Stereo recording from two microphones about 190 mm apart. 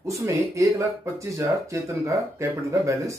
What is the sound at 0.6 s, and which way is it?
Speech, 15° right (ahead or behind).